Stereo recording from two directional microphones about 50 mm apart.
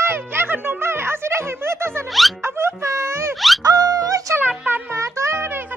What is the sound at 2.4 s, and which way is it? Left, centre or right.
Music, right.